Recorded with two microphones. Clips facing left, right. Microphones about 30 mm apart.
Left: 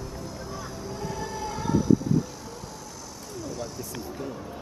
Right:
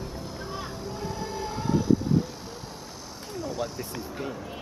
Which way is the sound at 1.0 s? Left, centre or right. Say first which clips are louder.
Even; right.